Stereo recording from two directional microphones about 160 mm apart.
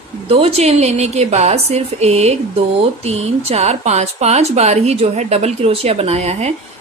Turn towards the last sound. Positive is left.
turn(degrees=-40)  # may be behind; listen again after turning